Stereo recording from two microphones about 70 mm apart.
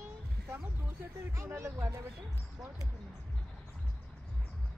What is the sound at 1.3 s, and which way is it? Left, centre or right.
Speech, right.